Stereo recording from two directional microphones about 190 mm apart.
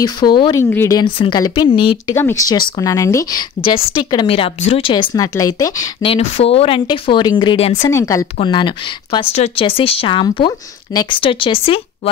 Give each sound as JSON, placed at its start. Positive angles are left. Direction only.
{"t": 0.0, "sound": "speech", "side_deg": 25}
{"t": 2.1, "sound": "a woman's voice", "side_deg": 15}
{"t": 6.1, "sound": "speech", "side_deg": 35}
{"t": 7.8, "sound": "a woman's voice", "side_deg": 15}